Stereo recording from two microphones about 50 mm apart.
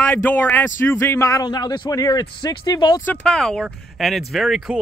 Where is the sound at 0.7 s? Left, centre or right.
Left.